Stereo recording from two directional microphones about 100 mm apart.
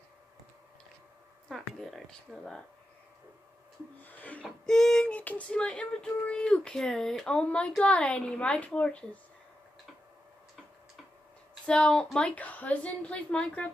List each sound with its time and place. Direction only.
1.5 s speech: centre (ahead or behind)
4.0 s child singing: 15° left (ahead or behind)
11.6 s child singing: 10° left (ahead or behind)